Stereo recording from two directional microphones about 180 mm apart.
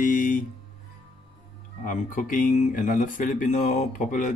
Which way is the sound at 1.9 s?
45° left (ahead or behind).